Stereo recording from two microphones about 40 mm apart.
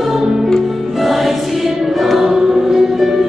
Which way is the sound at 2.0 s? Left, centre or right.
Centre.